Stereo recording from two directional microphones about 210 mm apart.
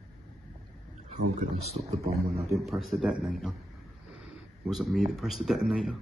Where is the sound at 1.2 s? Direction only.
30° right (ahead or behind).